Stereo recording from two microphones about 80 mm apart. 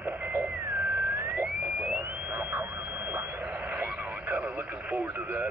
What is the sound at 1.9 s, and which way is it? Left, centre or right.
Radio, right.